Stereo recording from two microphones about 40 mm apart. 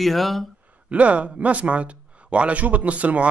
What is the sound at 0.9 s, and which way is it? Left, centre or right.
Speech, right.